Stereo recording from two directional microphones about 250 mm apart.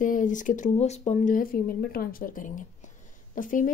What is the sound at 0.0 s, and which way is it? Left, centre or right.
A woman's voice, left.